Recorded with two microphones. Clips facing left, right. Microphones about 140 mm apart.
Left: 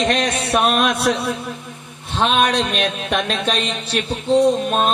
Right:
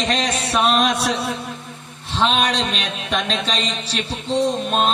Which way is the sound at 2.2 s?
50° left (ahead or behind).